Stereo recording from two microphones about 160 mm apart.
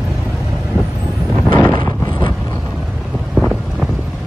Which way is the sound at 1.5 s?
25° left (ahead or behind).